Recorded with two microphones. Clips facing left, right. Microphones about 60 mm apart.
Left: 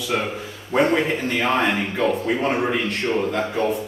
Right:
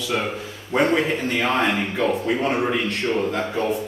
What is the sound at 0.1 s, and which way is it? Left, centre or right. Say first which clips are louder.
Speech: left 1 dB; centre.